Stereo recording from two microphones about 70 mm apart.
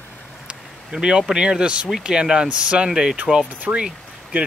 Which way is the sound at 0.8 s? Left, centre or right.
Centre.